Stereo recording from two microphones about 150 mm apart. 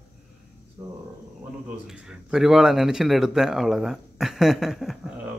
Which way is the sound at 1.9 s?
5° right (ahead or behind).